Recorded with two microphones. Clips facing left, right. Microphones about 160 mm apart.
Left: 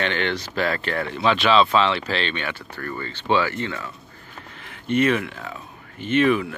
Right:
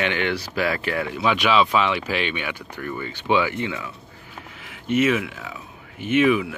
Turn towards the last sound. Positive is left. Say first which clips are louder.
# right 1 dB
turn(degrees=-5)  # may be behind; listen again after turning